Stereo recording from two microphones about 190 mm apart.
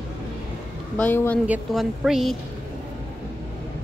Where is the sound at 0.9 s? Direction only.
10° left (ahead or behind).